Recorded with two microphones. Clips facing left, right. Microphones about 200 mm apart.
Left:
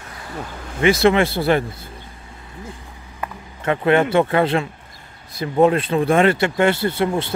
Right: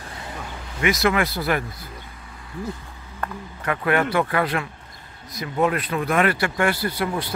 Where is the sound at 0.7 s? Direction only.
30° left (ahead or behind).